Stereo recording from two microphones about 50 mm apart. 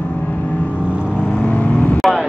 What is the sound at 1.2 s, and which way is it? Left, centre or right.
Vehicle, left.